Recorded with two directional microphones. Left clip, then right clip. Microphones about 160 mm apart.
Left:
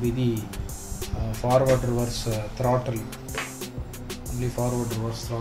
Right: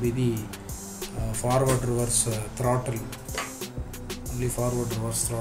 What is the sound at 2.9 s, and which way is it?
Music, centre (ahead or behind).